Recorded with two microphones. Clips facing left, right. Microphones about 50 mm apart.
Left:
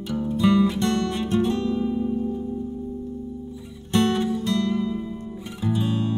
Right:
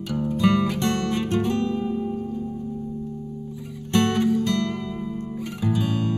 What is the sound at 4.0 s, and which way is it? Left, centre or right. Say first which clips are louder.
Music: right 2 dB; right.